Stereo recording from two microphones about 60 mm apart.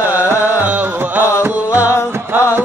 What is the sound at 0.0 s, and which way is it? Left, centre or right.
Music, right.